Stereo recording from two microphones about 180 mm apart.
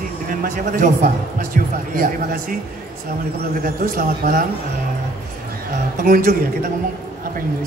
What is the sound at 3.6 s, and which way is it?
Speech, 55° right (ahead or behind).